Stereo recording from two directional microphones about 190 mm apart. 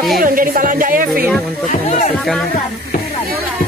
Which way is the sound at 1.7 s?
40° left (ahead or behind).